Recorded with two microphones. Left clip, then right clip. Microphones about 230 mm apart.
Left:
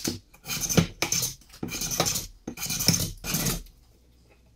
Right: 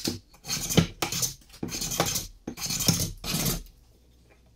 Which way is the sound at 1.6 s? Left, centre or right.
Centre.